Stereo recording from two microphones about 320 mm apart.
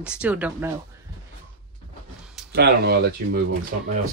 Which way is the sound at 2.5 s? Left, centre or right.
Right.